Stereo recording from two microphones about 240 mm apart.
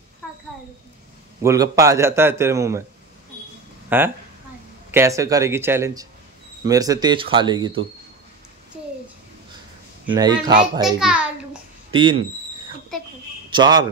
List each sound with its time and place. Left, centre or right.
1.4 s a man's voice: centre
3.9 s a man's voice: centre
10.0 s a man's voice: centre
11.0 s a child's voice: centre
11.9 s speech: centre
13.5 s a man's voice: centre